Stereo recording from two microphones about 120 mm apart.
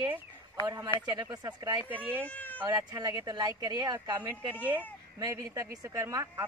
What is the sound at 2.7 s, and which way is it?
A woman's voice, 30° right (ahead or behind).